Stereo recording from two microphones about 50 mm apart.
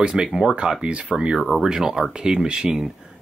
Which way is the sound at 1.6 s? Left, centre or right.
Centre.